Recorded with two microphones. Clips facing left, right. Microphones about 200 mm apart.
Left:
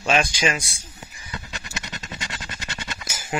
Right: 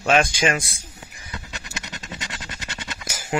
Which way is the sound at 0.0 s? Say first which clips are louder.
Right 2 dB; 50° right (ahead or behind).